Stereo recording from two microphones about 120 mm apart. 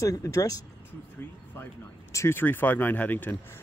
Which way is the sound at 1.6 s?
25° left (ahead or behind).